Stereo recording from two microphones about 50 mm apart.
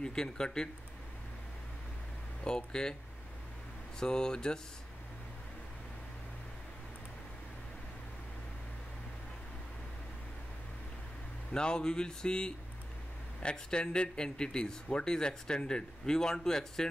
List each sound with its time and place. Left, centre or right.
0.0 s speech: centre
2.4 s speech: centre
4.0 s speech: centre
11.5 s speech: centre